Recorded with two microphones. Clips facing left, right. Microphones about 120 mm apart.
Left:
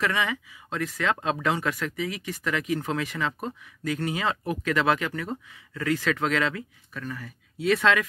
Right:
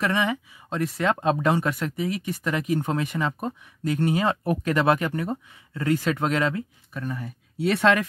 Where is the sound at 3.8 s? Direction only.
40° right (ahead or behind).